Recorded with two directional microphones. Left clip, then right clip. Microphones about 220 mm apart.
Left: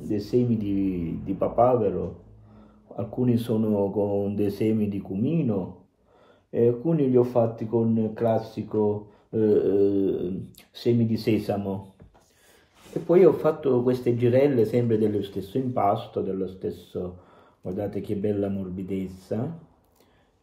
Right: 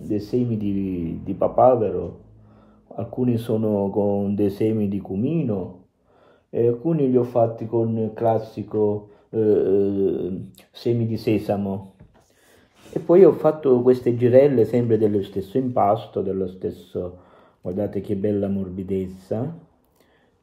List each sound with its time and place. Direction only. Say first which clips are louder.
0.1 s speech: right 1 dB; 10° right (ahead or behind)
3.0 s speech: right 2 dB; 10° right (ahead or behind)
6.5 s speech: right 2 dB; 15° right (ahead or behind)
12.8 s speech: right 4 dB; 20° right (ahead or behind)